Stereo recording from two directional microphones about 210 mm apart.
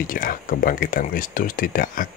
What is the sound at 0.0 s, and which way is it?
Speech, 40° left (ahead or behind).